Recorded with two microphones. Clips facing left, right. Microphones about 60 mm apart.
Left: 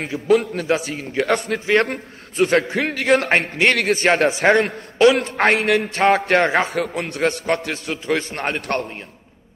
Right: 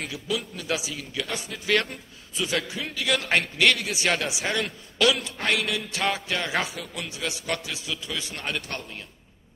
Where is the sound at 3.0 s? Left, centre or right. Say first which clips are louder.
Left 7 dB; left.